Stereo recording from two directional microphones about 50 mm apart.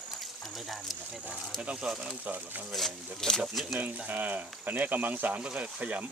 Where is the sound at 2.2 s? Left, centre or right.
Right.